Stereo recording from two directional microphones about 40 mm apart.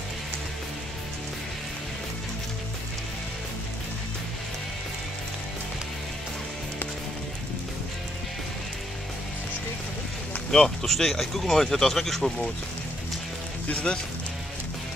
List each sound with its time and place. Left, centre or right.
10.5 s speech: centre
13.9 s speech: centre